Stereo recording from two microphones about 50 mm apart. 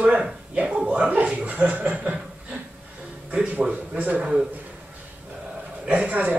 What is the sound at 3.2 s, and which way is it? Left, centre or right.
Speech, right.